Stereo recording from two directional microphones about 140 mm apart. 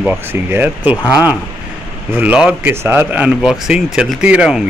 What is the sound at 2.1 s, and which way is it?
Speech, 10° right (ahead or behind).